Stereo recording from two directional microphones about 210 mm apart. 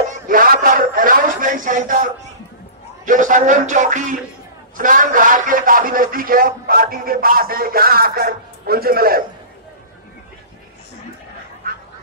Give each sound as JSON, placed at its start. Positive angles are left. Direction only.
{"t": 0.1, "sound": "a sound", "side_deg": -40}
{"t": 3.1, "sound": "music", "side_deg": -35}
{"t": 4.7, "sound": "a man's voice", "side_deg": -40}